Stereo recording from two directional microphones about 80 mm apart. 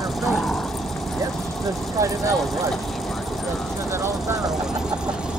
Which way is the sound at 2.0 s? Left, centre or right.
Right.